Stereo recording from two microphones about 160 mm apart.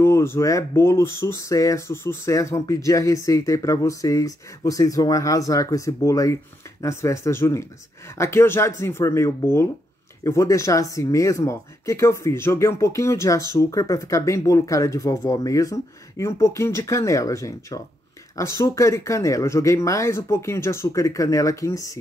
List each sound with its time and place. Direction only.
0.0 s speech: 15° left (ahead or behind)